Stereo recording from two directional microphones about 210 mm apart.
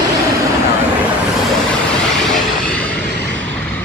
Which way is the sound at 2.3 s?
5° left (ahead or behind).